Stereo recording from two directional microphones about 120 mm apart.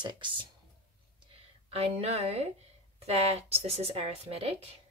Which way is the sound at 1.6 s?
55° right (ahead or behind).